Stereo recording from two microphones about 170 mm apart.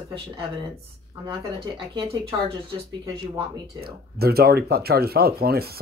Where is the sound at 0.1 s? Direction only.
35° right (ahead or behind).